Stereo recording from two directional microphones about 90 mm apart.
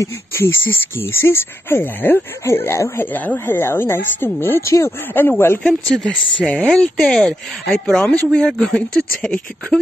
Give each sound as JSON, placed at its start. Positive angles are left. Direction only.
{"t": 0.0, "sound": "speech", "side_deg": 30}
{"t": 5.6, "sound": "speech", "side_deg": 5}